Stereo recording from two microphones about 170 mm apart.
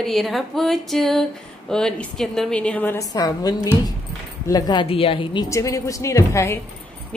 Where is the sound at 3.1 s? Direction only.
25° left (ahead or behind).